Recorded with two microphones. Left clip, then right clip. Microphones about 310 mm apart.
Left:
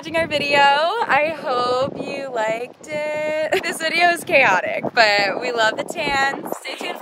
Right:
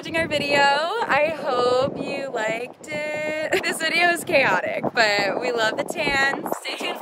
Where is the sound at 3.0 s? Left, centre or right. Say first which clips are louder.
Left 4 dB; centre.